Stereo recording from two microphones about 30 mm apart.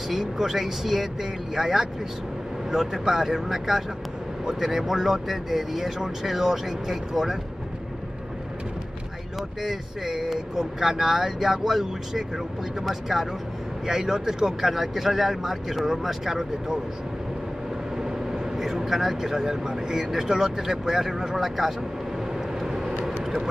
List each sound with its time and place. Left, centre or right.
0.1 s speech: centre
3.1 s speech: centre
9.6 s speech: centre
13.8 s speech: centre
17.9 s vehicle: centre
18.8 s speech: centre
19.3 s speech: centre
20.1 s speech: centre
22.6 s vehicle: centre